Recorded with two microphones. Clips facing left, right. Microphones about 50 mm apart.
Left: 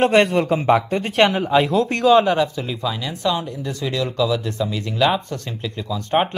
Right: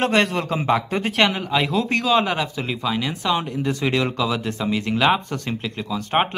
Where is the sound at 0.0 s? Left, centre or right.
Centre.